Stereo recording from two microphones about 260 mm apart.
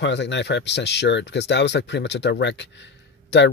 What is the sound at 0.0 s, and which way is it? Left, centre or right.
Speech, left.